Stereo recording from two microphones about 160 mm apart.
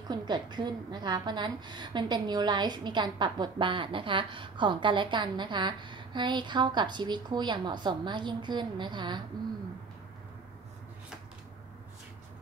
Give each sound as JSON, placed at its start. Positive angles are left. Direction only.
{"t": 0.1, "sound": "a woman's voice", "side_deg": -25}